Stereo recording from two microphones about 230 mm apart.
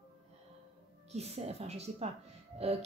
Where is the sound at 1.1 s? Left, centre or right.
Right.